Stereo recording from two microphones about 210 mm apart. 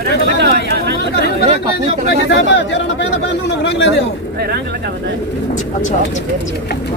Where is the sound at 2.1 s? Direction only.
55° left (ahead or behind).